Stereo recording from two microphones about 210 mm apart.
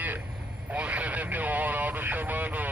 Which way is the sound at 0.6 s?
5° right (ahead or behind).